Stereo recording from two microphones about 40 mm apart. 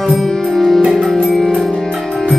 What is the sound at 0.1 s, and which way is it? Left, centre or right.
Music, centre.